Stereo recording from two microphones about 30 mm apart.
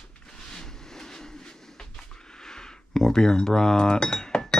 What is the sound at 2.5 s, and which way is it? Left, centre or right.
Cutlery, centre.